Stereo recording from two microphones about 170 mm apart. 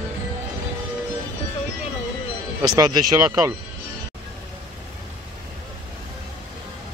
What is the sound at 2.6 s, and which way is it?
Speech, 25° right (ahead or behind).